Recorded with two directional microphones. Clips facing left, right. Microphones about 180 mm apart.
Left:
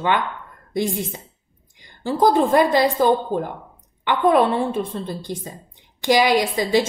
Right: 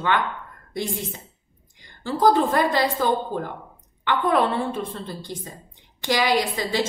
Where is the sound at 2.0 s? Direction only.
15° left (ahead or behind).